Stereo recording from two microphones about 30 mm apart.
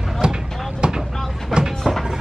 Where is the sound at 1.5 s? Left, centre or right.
Right.